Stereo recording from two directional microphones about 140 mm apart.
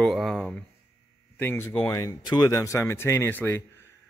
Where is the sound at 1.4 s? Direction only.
15° left (ahead or behind).